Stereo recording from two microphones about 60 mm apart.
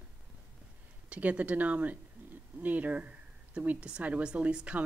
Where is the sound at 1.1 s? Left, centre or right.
Right.